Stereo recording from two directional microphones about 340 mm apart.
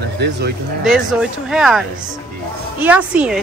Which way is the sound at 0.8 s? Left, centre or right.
Centre.